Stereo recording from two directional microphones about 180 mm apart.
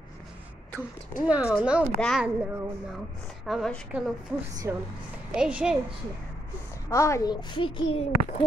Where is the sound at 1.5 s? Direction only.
5° right (ahead or behind).